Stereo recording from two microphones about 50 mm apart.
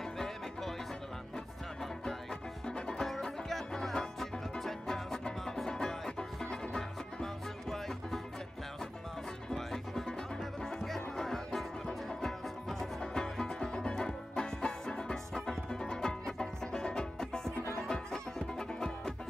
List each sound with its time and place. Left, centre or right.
0.2 s music: centre
2.6 s music: centre
9.5 s music: centre